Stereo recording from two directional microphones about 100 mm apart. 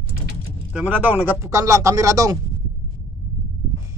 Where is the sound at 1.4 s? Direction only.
30° right (ahead or behind).